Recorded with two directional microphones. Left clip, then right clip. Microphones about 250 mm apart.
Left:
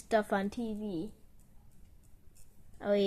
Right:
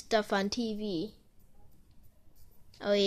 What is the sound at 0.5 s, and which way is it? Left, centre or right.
Speech, right.